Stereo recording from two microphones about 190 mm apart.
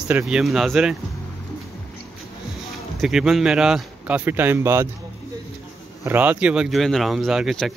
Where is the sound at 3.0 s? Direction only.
Centre (ahead or behind).